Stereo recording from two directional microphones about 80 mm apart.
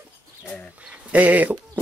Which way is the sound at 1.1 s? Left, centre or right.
Centre.